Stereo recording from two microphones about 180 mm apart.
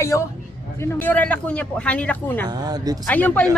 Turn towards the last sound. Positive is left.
turn(degrees=10)  # may be behind; listen again after turning